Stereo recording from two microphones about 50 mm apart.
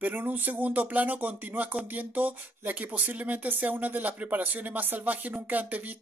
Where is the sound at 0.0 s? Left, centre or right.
Right.